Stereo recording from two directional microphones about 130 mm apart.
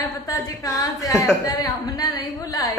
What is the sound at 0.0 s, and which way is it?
A woman's voice, 25° left (ahead or behind).